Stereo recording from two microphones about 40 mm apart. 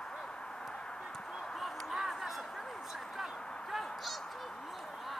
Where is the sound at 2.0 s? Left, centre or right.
Centre.